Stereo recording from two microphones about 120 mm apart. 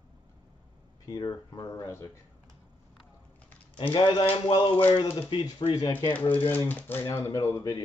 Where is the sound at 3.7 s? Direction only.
45° left (ahead or behind).